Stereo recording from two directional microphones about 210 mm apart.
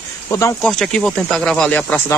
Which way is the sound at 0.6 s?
5° left (ahead or behind).